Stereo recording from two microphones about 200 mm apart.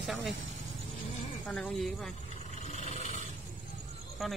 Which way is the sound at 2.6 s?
35° left (ahead or behind).